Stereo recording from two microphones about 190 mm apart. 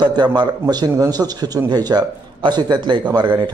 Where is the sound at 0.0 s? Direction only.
25° right (ahead or behind).